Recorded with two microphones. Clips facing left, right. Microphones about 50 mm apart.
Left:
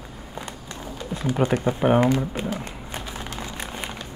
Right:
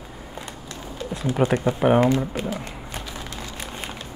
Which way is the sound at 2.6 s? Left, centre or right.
Left.